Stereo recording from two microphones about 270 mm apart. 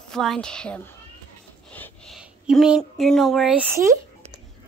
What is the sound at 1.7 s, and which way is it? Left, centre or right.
Speech, centre.